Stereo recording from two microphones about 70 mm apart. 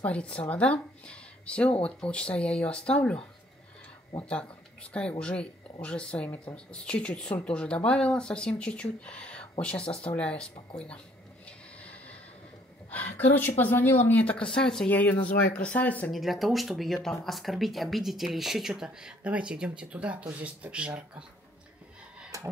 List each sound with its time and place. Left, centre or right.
0.0 s speech: centre
4.2 s a woman's voice: centre
11.4 s a sound: centre
12.9 s a woman's voice: left
14.9 s a woman's voice: left
16.1 s speech: centre